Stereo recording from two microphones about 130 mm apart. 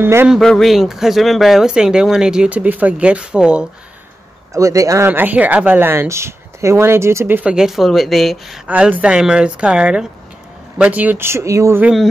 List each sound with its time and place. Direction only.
0.0 s speech: 15° right (ahead or behind)
0.3 s speech: 5° left (ahead or behind)
4.6 s speech: 25° right (ahead or behind); by 8.5 s centre (ahead or behind)
8.6 s speech: 10° right (ahead or behind)